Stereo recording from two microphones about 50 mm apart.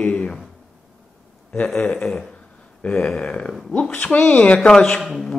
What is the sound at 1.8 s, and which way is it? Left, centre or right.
Speech, centre.